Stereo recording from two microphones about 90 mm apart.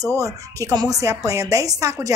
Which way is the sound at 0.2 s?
40° right (ahead or behind).